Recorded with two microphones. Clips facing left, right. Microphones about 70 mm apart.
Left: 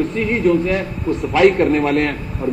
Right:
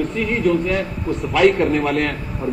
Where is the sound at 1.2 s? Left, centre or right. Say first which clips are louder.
Left 2 dB; centre.